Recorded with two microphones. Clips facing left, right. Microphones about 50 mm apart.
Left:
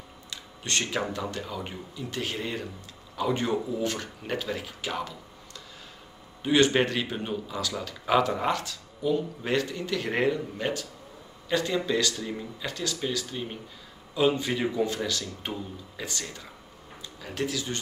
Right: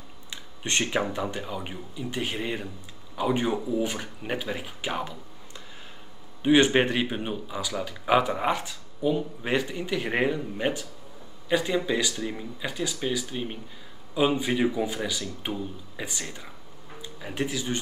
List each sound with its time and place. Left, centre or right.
0.3 s a man's voice: right
6.4 s a man's voice: right